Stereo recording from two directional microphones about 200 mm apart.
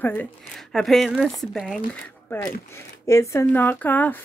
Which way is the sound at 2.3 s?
10° left (ahead or behind).